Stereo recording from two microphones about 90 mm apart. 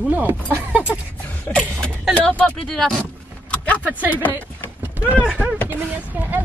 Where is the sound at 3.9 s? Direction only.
15° right (ahead or behind).